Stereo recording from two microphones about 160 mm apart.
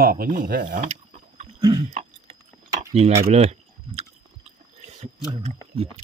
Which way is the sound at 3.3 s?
40° right (ahead or behind).